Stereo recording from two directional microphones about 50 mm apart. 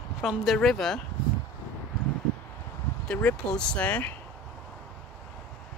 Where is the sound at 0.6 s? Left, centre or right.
Centre.